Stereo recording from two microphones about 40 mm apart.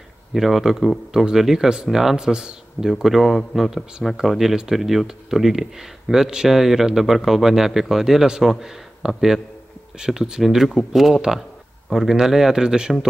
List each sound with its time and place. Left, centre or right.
0.3 s speech: centre
2.1 s speech: centre
2.9 s speech: centre
10.4 s speech: centre